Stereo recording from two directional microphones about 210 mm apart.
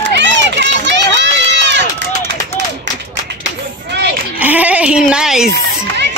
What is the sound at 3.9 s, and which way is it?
Sheep, 55° right (ahead or behind).